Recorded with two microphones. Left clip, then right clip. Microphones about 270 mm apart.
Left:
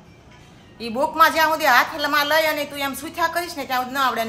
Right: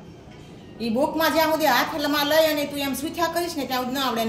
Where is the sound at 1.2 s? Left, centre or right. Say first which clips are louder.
Left 4 dB; left.